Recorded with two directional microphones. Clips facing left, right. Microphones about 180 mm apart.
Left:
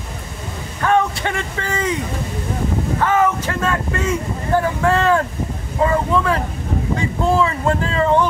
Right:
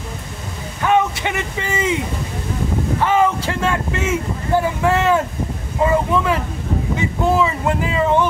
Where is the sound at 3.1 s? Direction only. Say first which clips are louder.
Right 1 dB; 10° right (ahead or behind).